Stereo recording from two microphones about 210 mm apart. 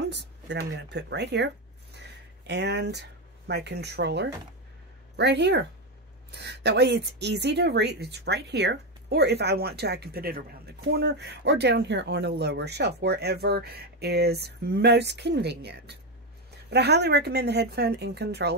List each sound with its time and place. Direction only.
0.1 s speech: 55° right (ahead or behind)